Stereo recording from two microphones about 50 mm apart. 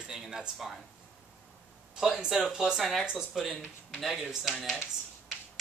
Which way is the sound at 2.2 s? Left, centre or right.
Centre.